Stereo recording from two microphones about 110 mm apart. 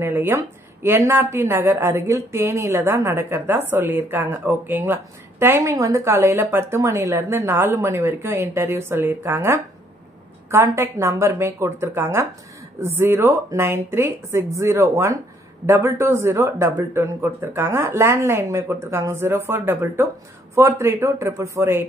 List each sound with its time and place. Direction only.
0.0 s a woman's voice: 20° right (ahead or behind)